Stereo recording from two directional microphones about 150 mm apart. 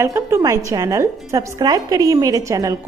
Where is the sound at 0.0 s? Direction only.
20° right (ahead or behind).